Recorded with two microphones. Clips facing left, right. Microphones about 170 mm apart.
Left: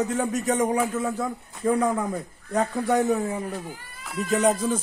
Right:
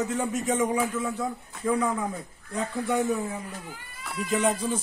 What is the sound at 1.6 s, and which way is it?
Speech, 45° left (ahead or behind).